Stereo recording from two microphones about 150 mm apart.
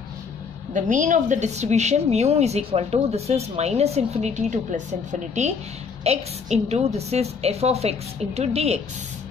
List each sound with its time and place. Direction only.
0.7 s a woman's voice: 55° right (ahead or behind)
6.0 s a woman's voice: 45° right (ahead or behind)